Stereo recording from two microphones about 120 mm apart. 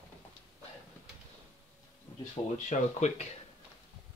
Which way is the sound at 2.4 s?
30° left (ahead or behind).